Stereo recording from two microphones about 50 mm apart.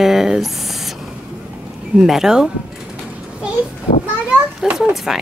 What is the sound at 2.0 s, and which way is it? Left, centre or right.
Speech, centre.